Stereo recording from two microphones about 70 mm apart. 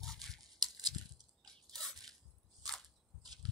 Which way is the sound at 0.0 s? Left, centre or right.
Centre.